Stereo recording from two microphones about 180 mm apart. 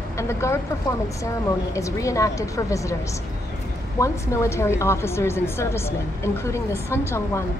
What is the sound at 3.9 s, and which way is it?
A woman's voice, 15° left (ahead or behind).